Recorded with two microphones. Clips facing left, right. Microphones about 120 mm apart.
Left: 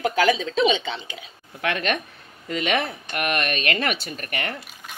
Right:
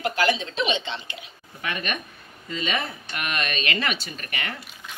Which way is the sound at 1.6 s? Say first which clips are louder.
Left 6 dB; 75° left (ahead or behind).